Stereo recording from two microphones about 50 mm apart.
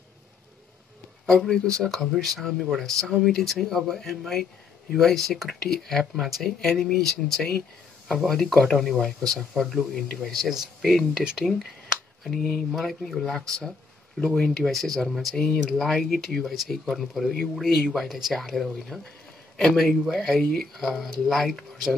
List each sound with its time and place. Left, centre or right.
1.5 s speech: centre
6.1 s speech: centre
15.3 s speech: centre
15.8 s speech: centre